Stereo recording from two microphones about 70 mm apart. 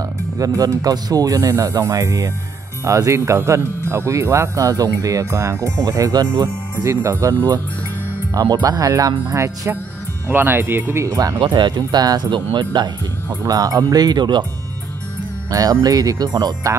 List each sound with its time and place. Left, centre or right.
0.4 s speech: right
8.4 s speech: right
10.2 s speech: right
11.1 s speech: right
13.4 s speech: right
15.5 s speech: right